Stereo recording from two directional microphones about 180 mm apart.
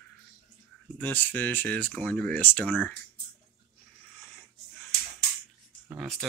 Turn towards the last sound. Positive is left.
turn(degrees=0)  # may be behind; listen again after turning